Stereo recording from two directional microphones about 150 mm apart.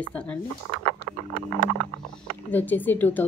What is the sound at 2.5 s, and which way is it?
Speech, 10° left (ahead or behind).